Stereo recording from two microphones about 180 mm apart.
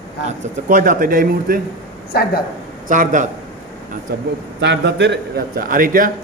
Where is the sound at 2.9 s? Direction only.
45° right (ahead or behind).